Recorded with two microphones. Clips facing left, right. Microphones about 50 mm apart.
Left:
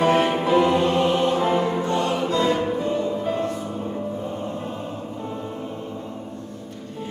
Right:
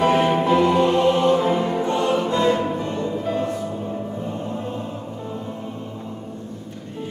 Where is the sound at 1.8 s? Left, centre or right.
Right.